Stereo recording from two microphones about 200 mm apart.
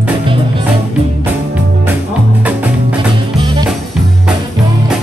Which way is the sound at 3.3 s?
25° right (ahead or behind).